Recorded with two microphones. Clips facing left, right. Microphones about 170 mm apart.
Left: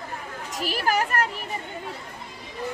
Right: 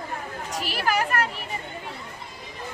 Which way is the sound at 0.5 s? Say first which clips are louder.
Left 1 dB; 45° left (ahead or behind).